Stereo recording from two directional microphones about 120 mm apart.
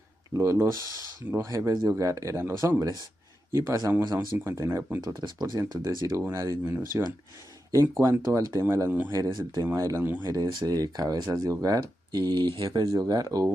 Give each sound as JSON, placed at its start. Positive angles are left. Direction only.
{"t": 0.3, "sound": "speech", "side_deg": -25}
{"t": 4.0, "sound": "speech", "side_deg": -35}
{"t": 4.5, "sound": "speech", "side_deg": -25}